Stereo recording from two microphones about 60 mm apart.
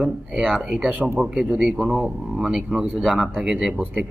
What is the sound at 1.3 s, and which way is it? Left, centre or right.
Speech, right.